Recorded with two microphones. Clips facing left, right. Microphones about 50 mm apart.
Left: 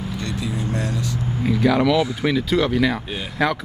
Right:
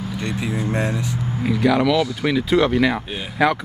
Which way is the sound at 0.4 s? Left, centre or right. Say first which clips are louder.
Right 4 dB; right.